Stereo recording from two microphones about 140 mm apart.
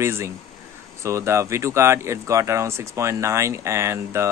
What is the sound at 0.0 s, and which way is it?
Speech, 20° right (ahead or behind).